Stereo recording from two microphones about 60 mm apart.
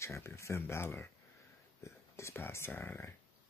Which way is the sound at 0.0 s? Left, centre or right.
Left.